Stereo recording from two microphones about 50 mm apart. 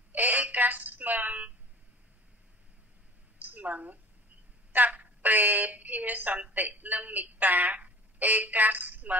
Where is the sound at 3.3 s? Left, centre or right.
Right.